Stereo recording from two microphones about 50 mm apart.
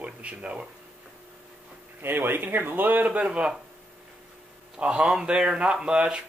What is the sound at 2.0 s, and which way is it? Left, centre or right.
Speech, right.